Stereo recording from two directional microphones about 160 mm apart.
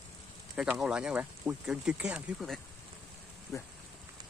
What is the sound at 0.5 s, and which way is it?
Speech, 5° right (ahead or behind).